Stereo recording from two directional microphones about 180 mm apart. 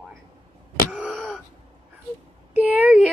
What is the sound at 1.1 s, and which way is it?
Gasp, 5° left (ahead or behind).